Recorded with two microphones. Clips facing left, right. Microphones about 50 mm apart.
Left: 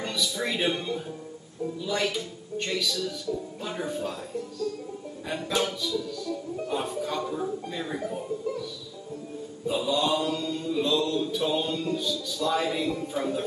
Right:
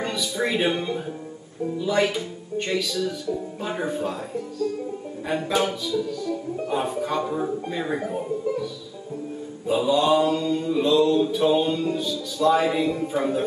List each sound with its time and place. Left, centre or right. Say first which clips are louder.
0.0 s mantra: right 4 dB; centre
9.7 s mantra: right 6 dB; centre